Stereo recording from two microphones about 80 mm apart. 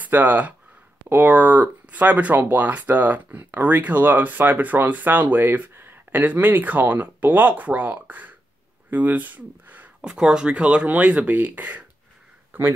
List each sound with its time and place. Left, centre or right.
0.0 s speech: right
10.0 s speech: centre